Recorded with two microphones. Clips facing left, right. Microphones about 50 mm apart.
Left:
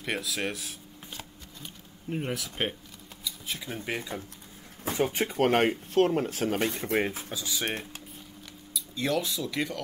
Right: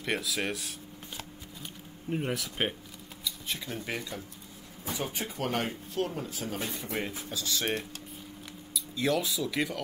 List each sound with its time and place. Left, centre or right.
0.0 s speech: centre
3.9 s speech: left
4.8 s speech: left
7.2 s speech: centre
8.7 s speech: centre